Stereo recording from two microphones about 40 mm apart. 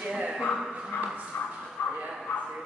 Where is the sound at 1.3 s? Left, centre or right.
Left.